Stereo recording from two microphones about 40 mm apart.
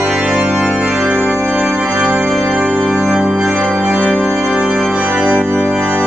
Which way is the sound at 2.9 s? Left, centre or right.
Centre.